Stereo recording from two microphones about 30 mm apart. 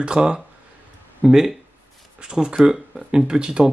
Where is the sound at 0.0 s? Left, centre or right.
Right.